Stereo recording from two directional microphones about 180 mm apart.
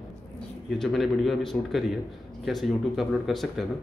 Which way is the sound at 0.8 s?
Centre (ahead or behind).